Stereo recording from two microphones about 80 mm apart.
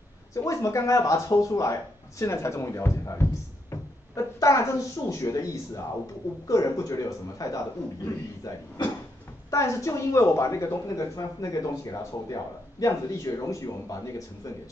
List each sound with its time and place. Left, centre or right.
0.3 s a man's voice: left